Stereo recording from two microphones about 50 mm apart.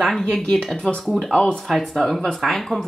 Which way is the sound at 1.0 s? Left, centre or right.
Centre.